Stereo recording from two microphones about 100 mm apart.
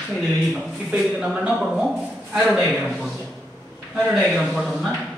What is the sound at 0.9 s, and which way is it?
A man's voice, 10° right (ahead or behind).